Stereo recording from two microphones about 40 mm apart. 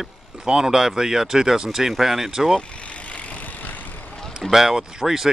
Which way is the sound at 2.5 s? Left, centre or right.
Left.